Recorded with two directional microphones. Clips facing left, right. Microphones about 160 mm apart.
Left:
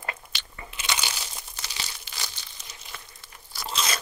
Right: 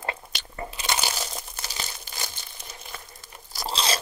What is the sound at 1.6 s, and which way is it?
Crumpling, 45° right (ahead or behind).